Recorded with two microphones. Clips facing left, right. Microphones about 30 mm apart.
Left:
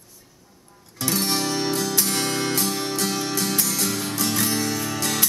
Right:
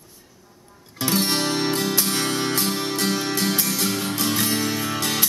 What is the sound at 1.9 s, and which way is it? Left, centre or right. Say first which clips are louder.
Music: right 1 dB; right.